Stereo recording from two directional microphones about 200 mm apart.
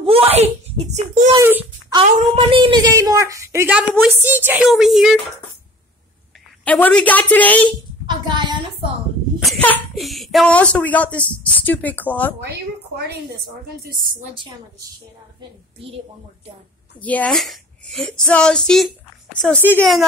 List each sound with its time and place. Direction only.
0.0 s a sound: 30° right (ahead or behind)
0.9 s a child's voice: 35° right (ahead or behind)
1.3 s a child's voice: 10° right (ahead or behind)
2.0 s a woman's voice: 25° right (ahead or behind); by 3.8 s 10° right (ahead or behind)
3.8 s a woman's voice: 5° left (ahead or behind)
4.2 s a woman's voice: 10° right (ahead or behind)
6.6 s a woman's voice: 5° left (ahead or behind)
8.1 s a sound: 20° right (ahead or behind)
9.4 s a woman's voice: 5° left (ahead or behind)
12.4 s a woman's voice: 55° right (ahead or behind)
17.0 s a woman's voice: 5° left (ahead or behind)